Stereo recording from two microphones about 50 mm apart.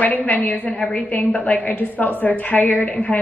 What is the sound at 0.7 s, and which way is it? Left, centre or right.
Speech, centre.